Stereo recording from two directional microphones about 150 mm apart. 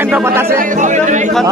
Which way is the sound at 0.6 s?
55° right (ahead or behind).